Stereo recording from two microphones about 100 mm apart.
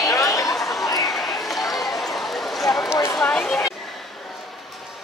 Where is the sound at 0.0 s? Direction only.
35° left (ahead or behind).